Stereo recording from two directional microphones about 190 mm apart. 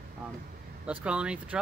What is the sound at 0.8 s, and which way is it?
Speech, 5° right (ahead or behind).